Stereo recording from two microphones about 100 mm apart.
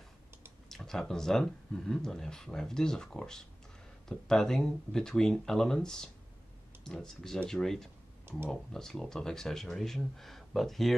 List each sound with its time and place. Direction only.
0.7 s speech: 5° left (ahead or behind)